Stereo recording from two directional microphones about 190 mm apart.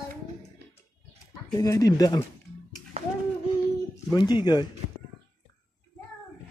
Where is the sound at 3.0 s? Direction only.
30° right (ahead or behind).